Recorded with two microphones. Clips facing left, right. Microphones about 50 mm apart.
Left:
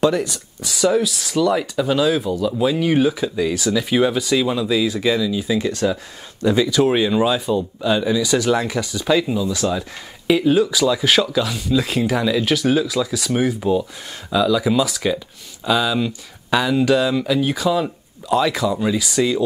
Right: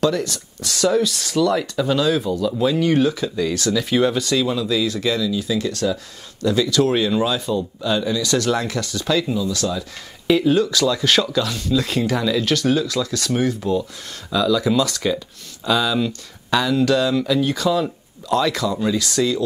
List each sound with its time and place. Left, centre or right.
0.0 s speech: centre
10.2 s speech: centre